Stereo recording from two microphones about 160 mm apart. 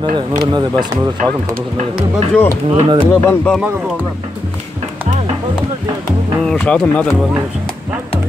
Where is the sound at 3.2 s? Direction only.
5° left (ahead or behind).